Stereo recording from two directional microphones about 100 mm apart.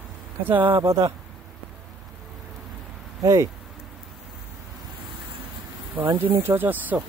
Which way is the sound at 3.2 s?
30° right (ahead or behind).